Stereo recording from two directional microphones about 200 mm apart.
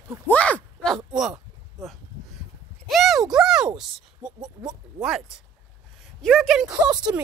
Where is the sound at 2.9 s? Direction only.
Centre (ahead or behind).